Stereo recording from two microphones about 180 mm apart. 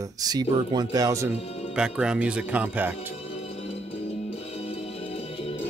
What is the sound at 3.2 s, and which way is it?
Music, 35° left (ahead or behind).